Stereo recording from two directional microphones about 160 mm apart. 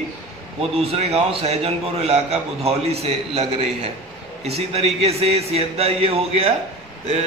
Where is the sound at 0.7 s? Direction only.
40° right (ahead or behind).